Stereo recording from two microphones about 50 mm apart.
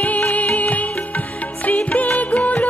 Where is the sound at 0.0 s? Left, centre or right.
Left.